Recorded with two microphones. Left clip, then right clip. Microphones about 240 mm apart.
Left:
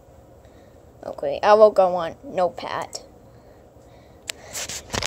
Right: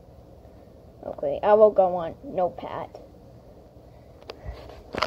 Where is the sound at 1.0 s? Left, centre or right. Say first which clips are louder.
Left 3 dB; centre.